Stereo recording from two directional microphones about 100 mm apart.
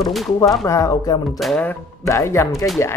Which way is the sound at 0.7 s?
35° left (ahead or behind).